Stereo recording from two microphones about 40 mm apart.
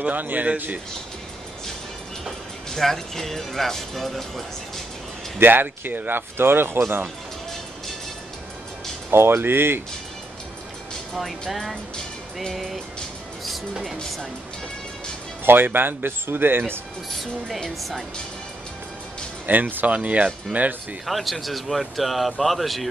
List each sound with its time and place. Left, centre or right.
0.1 s speech: right
2.7 s speech: centre
5.4 s speech: right
9.1 s speech: right
12.5 s speech: centre
15.4 s speech: right
17.1 s speech: centre
19.4 s speech: right
19.9 s speech: right
21.0 s speech: centre